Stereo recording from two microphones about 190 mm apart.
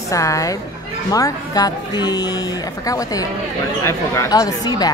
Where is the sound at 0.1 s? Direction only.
15° left (ahead or behind).